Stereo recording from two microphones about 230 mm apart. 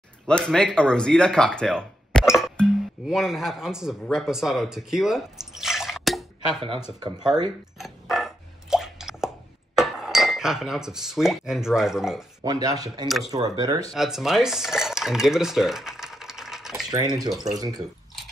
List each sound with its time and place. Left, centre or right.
0.3 s speech: centre
7.8 s a sound: centre
9.8 s speech: centre
12.4 s speech: centre
13.9 s cutlery: centre
16.9 s speech: centre